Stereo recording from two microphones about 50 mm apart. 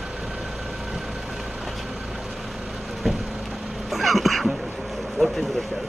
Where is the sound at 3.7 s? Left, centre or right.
Centre.